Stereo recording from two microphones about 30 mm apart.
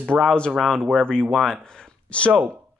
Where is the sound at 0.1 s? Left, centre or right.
Right.